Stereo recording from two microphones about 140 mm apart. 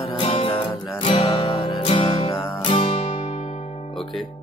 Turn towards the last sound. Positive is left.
turn(degrees=55)  # may be behind; listen again after turning